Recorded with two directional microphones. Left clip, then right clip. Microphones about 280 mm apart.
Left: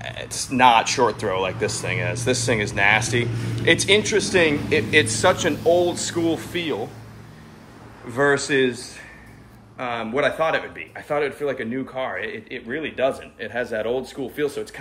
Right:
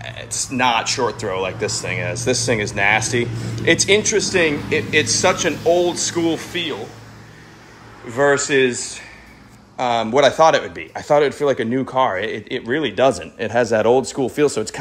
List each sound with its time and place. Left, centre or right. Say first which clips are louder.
0.0 s speech: right 3 dB; centre
8.1 s speech: right 3 dB; centre
9.8 s a man's voice: right 8 dB; centre